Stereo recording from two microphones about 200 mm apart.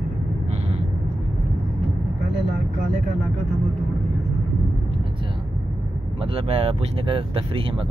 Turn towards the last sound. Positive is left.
turn(degrees=-25)  # may be behind; listen again after turning